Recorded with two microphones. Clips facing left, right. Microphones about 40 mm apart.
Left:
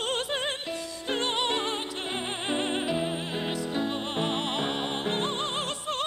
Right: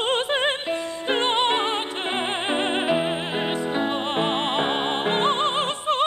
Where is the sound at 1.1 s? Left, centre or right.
Right.